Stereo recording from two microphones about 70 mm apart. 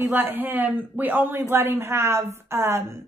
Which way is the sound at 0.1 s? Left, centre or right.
Right.